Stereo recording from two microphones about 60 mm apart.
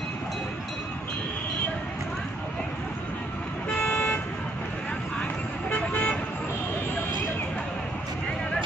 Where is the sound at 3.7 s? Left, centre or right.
Left.